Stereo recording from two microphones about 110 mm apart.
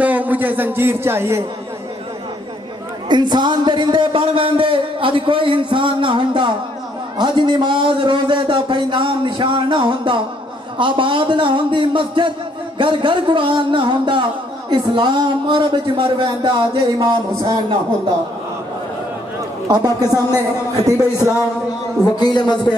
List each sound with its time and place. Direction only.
0.0 s speech: 15° right (ahead or behind)
3.1 s speech: 40° right (ahead or behind)
19.7 s a woman's voice: 35° right (ahead or behind)
22.0 s a man's voice: 35° left (ahead or behind)